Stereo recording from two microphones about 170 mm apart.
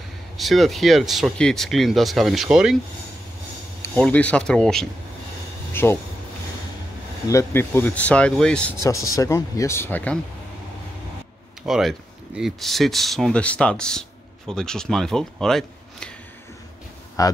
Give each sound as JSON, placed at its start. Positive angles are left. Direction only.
{"t": 0.4, "sound": "speech", "side_deg": 0}
{"t": 3.8, "sound": "speech", "side_deg": 10}
{"t": 5.7, "sound": "a sound", "side_deg": 15}
{"t": 7.2, "sound": "speech", "side_deg": 15}
{"t": 8.8, "sound": "speech", "side_deg": 20}
{"t": 11.6, "sound": "speech", "side_deg": 0}
{"t": 17.2, "sound": "speech", "side_deg": 20}